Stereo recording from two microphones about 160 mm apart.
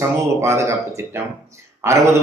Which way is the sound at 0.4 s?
20° right (ahead or behind).